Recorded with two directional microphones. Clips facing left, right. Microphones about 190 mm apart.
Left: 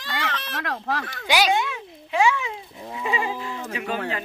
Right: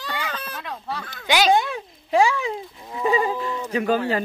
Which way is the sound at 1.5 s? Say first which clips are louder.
Right 4 dB; 35° right (ahead or behind).